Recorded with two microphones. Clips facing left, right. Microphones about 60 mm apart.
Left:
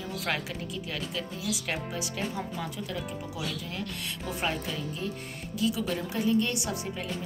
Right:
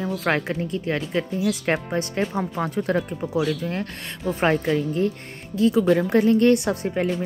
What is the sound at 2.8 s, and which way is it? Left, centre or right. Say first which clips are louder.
A woman's voice: right 11 dB; right.